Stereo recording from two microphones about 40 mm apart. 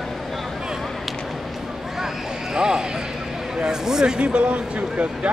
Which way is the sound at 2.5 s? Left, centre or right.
Centre.